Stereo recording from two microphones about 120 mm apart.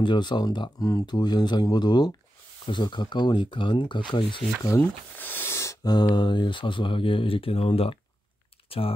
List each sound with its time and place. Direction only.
0.0 s speech: 40° left (ahead or behind)
4.6 s speech: 20° left (ahead or behind); by 8.0 s 55° left (ahead or behind)
8.6 s typing: 50° left (ahead or behind)